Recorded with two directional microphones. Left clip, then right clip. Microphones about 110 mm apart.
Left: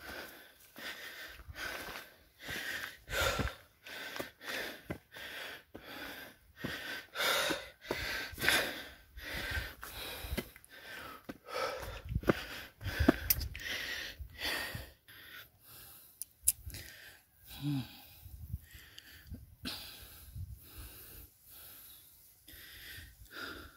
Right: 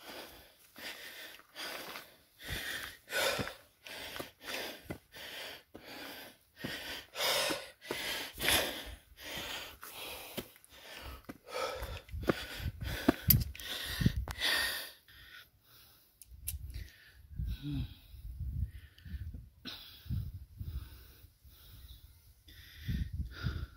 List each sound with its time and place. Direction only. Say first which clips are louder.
0.0 s wheeze: left 2 dB; 40° right (ahead or behind)
4.8 s snort: left 1 dB; 35° right (ahead or behind)
11.4 s sniff: even; 30° right (ahead or behind)
12.4 s a sound: even; 45° right (ahead or behind); by 14.1 s 25° right (ahead or behind)
14.4 s gasp: right 6 dB; 5° right (ahead or behind)
15.0 s snort: left 2 dB; 15° left (ahead or behind)
16.4 s a sound: left 9 dB; 45° left (ahead or behind)
19.6 s cough: left 3 dB; 20° left (ahead or behind)
22.5 s wheeze: right 1 dB; 15° left (ahead or behind)